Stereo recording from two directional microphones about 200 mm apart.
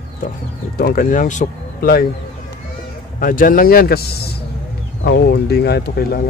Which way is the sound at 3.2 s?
45° left (ahead or behind).